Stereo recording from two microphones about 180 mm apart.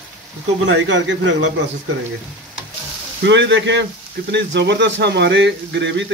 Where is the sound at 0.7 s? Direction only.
90° right.